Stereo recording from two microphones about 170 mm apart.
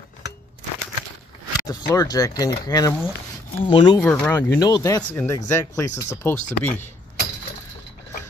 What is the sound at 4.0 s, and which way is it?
Speech, 10° left (ahead or behind).